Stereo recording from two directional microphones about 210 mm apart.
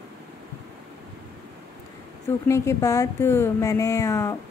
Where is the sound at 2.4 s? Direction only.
15° left (ahead or behind).